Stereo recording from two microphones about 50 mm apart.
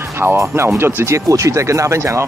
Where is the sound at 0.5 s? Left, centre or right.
Right.